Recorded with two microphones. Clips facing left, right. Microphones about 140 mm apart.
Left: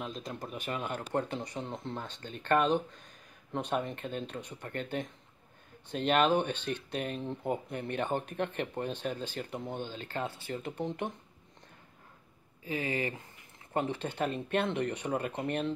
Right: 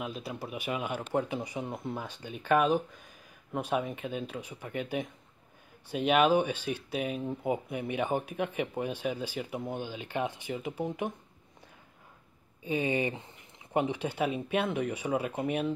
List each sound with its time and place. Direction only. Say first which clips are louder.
0.0 s speech: right 2 dB; 5° right (ahead or behind)
12.6 s speech: right 4 dB; 20° right (ahead or behind)